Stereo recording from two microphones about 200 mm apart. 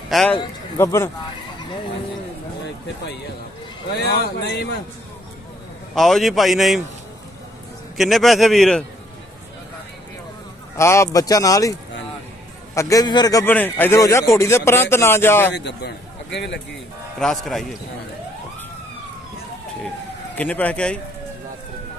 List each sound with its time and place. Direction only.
0.1 s a man's voice: centre (ahead or behind)
0.4 s a man's voice: 15° left (ahead or behind)
4.0 s speech: 55° left (ahead or behind)
5.9 s a man's voice: centre (ahead or behind)
8.0 s a man's voice: centre (ahead or behind)
10.8 s a man's voice: 15° left (ahead or behind)
12.7 s a man's voice: 15° left (ahead or behind)
15.5 s a man's voice: 60° left (ahead or behind)
17.2 s a man's voice: centre (ahead or behind)
20.3 s a man's voice: 5° left (ahead or behind)